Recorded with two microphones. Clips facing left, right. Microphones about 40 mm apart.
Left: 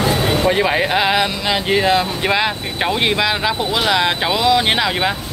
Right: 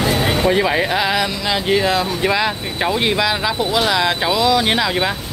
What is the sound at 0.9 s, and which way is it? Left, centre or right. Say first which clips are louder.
Speech: left 2 dB; left.